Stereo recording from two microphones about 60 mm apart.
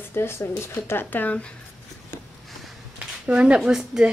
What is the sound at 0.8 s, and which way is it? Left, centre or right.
Speech, left.